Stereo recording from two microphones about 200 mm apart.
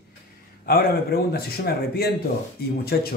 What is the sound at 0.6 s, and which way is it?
Speech, 50° left (ahead or behind).